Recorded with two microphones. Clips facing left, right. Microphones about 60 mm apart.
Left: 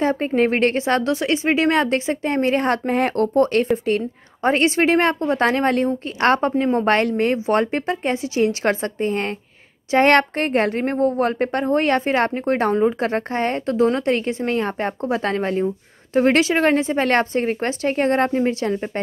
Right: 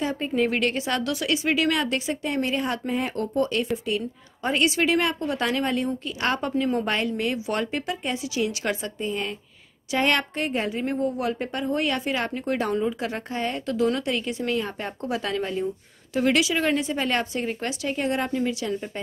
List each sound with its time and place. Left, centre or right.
0.0 s speech: left
6.5 s speech: left
6.9 s a woman's voice: left